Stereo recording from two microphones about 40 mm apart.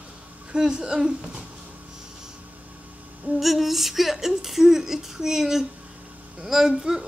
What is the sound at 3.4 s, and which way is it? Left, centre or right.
A woman's voice, centre.